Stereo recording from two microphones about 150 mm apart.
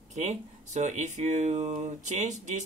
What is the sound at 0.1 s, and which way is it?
Speech, 50° right (ahead or behind).